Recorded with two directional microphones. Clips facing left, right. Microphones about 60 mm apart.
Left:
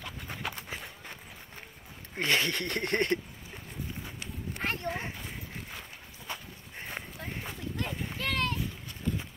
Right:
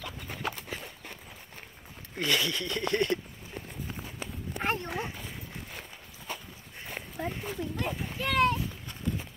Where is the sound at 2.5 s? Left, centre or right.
Left.